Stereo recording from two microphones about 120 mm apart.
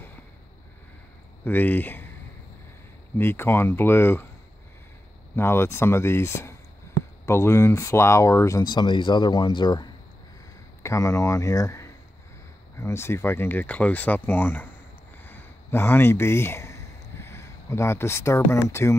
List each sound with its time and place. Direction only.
1.4 s speech: 15° left (ahead or behind)
3.2 s speech: 20° left (ahead or behind)
5.3 s speech: 20° left (ahead or behind)
8.7 s speech: 40° left (ahead or behind)
10.8 s speech: 25° left (ahead or behind)
15.2 s a sound: 15° left (ahead or behind)